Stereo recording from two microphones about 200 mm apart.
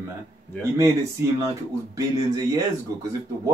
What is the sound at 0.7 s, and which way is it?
Speech, 15° right (ahead or behind).